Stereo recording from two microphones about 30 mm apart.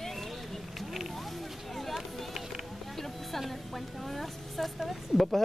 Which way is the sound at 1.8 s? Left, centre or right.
Centre.